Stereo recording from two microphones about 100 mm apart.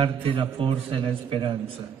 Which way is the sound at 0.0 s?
60° right (ahead or behind).